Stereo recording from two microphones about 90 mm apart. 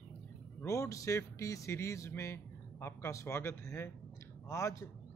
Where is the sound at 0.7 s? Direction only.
35° left (ahead or behind).